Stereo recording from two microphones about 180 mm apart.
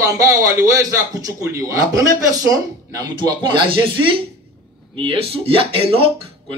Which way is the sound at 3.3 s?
25° right (ahead or behind).